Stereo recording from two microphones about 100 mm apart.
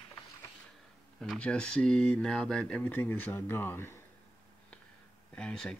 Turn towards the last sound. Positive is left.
turn(degrees=5)  # may be behind; listen again after turning